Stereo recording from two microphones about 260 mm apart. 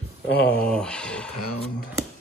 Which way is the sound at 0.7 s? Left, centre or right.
Centre.